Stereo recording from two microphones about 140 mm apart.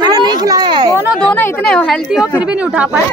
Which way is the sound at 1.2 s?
10° left (ahead or behind).